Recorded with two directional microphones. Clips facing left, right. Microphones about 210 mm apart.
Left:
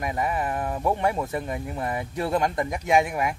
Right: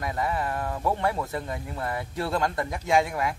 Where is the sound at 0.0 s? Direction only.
15° left (ahead or behind).